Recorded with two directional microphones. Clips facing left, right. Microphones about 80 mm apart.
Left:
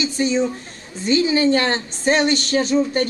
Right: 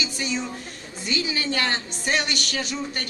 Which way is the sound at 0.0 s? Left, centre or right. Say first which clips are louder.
Left 8 dB; left.